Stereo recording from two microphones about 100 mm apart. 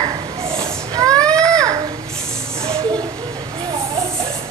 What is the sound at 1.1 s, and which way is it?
Baby cry, 10° left (ahead or behind).